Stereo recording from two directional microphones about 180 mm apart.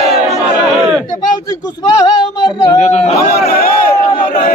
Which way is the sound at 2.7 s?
40° left (ahead or behind).